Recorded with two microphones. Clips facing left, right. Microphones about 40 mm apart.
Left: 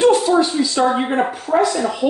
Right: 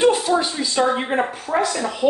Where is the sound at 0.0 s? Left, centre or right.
Centre.